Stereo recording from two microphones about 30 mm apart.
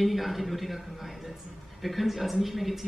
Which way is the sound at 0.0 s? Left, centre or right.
Centre.